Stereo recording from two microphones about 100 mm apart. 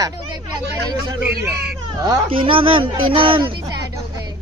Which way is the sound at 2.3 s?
60° right (ahead or behind).